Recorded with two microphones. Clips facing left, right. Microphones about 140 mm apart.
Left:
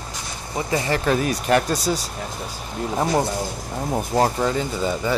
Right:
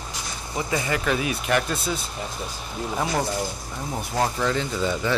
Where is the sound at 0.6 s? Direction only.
35° left (ahead or behind).